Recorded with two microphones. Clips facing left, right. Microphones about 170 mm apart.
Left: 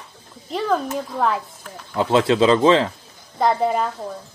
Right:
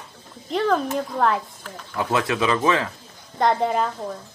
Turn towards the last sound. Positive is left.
turn(degrees=0)  # may be behind; listen again after turning